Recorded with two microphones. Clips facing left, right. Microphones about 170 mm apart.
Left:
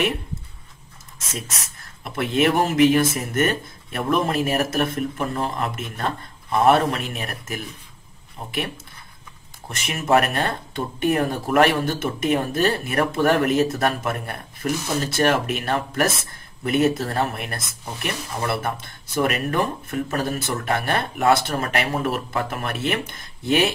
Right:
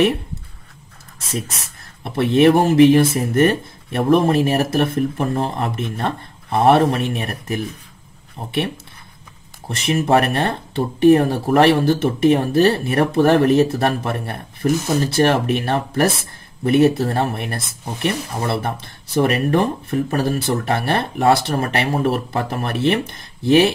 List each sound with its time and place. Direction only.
2.0 s speech: 30° right (ahead or behind)